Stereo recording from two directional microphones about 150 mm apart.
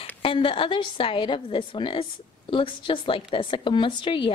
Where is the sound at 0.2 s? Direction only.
35° left (ahead or behind).